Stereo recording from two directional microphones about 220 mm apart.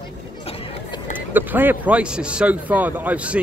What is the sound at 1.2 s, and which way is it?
A man's voice, 10° right (ahead or behind).